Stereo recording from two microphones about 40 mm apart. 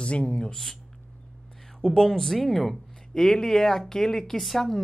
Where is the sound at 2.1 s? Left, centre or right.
Centre.